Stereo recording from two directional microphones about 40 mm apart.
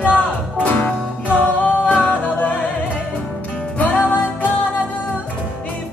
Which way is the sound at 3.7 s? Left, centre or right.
Left.